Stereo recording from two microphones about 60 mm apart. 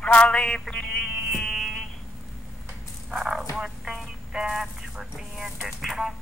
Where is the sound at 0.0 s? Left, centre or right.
Centre.